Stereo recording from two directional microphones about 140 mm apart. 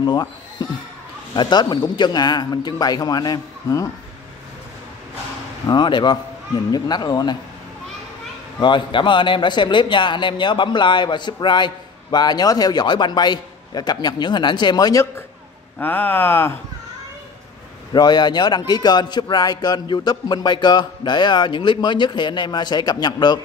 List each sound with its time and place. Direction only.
0.0 s a man's voice: 30° left (ahead or behind)
5.7 s a man's voice: 35° left (ahead or behind)
8.5 s a man's voice: 35° left (ahead or behind)
15.8 s speech: 15° left (ahead or behind)
17.9 s a man's voice: 30° left (ahead or behind)